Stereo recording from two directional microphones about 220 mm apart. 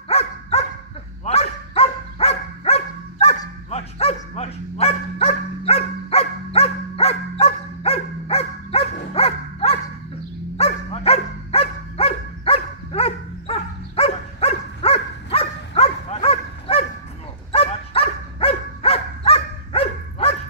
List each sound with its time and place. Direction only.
0.1 s dog: 30° left (ahead or behind)